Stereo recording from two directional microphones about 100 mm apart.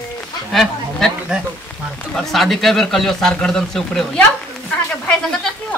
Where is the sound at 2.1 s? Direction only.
Centre (ahead or behind).